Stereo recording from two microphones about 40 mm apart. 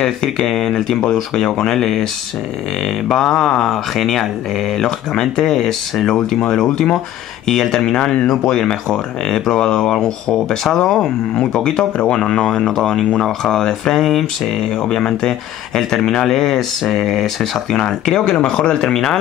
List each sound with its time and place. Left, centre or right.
0.0 s speech: centre
3.1 s speech: centre
3.6 s speech: centre
10.6 s speech: centre
11.7 s speech: left; by 17.7 s centre
17.7 s speech: centre